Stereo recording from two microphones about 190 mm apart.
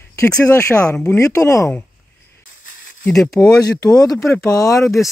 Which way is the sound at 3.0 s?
5° left (ahead or behind).